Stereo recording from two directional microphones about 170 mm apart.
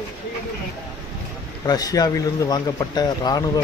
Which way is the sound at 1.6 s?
20° left (ahead or behind).